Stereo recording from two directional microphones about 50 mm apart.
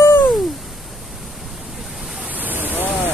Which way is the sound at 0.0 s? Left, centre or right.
Left.